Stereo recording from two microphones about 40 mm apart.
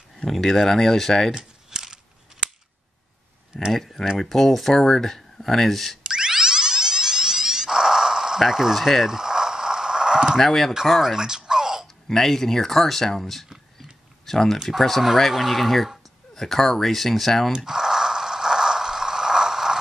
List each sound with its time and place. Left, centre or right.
0.2 s speech: centre
1.3 s a sound: centre
3.5 s speech: centre
6.0 s music: centre
8.7 s speech: centre
9.0 s mechanisms: centre
10.4 s speech: centre
10.9 s speech: centre
11.1 s a sound: centre
12.1 s speech: centre
13.7 s a sound: centre
14.8 s speech: centre
17.6 s a sound: centre